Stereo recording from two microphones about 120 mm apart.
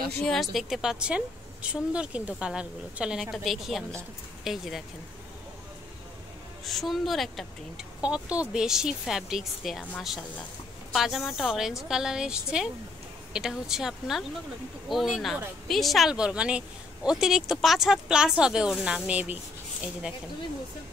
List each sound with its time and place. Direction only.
0.2 s a woman's voice: centre (ahead or behind)
6.6 s a woman's voice: centre (ahead or behind)